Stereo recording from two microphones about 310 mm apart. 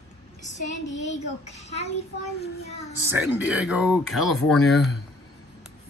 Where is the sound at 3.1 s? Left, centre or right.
Centre.